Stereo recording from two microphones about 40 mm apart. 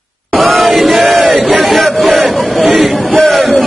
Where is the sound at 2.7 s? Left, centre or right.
Centre.